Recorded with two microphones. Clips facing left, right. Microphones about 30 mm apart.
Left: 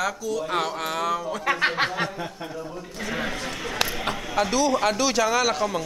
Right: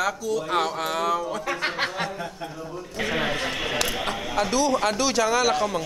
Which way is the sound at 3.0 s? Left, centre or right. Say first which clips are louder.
Right 4 dB; right.